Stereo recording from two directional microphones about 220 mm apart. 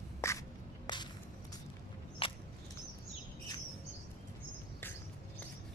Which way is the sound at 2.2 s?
25° left (ahead or behind).